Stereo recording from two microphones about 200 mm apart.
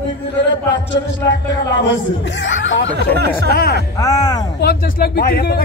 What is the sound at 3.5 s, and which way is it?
Speech, 50° left (ahead or behind).